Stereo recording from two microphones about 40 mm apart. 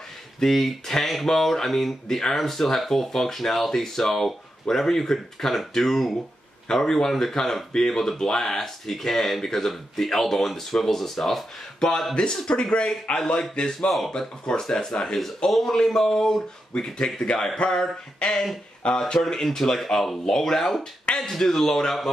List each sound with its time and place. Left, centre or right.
0.4 s speech: centre
6.7 s speech: centre
11.8 s speech: centre
13.6 s speech: centre
15.1 s speech: centre
16.7 s speech: left
19.2 s speech: centre